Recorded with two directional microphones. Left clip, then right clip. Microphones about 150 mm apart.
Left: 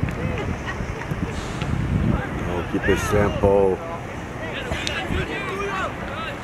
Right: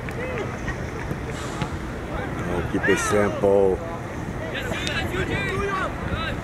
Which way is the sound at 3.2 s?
30° left (ahead or behind).